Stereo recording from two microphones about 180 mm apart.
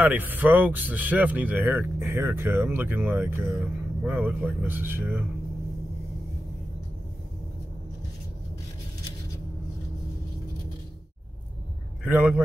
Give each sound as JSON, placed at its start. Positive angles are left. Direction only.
{"t": 0.0, "sound": "speech", "side_deg": -10}
{"t": 12.0, "sound": "a man's voice", "side_deg": -10}